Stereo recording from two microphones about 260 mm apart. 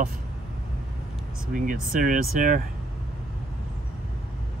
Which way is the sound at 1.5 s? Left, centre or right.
Right.